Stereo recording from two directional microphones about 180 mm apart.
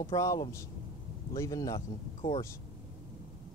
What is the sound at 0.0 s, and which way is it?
Speech, 20° left (ahead or behind).